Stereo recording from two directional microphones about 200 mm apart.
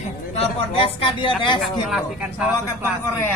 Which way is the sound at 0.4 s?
30° left (ahead or behind).